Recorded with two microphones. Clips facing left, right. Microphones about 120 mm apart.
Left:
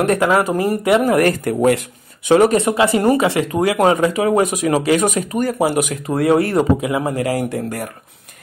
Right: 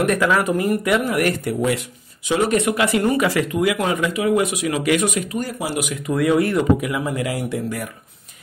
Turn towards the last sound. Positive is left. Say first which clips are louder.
# left 2 dB
turn(degrees=45)  # may be behind; listen again after turning